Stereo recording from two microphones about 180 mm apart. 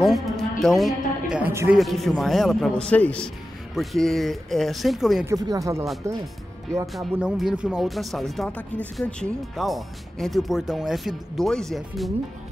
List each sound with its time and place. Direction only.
0.0 s a woman's voice: centre (ahead or behind)
1.5 s speech: 15° right (ahead or behind)
1.8 s speech: centre (ahead or behind)
5.2 s speech: 20° right (ahead or behind)
6.9 s speech: centre (ahead or behind)